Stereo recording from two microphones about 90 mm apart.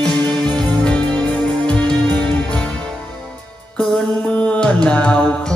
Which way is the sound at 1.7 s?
15° left (ahead or behind).